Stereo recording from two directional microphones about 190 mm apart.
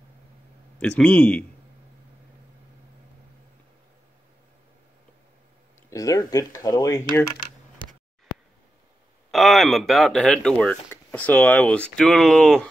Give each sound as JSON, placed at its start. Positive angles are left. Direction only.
{"t": 0.7, "sound": "speech", "side_deg": 5}
{"t": 5.9, "sound": "speech", "side_deg": 15}
{"t": 9.3, "sound": "speech", "side_deg": 0}